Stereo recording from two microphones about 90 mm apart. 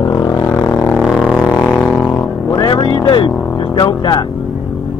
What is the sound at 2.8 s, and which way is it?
Vehicle, 65° left (ahead or behind).